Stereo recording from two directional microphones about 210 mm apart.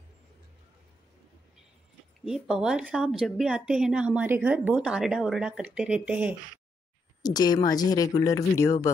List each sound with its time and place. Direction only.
2.2 s a woman's voice: centre (ahead or behind)
7.2 s speech: 20° left (ahead or behind)